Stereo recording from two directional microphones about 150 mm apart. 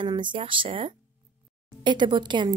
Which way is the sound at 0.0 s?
30° right (ahead or behind).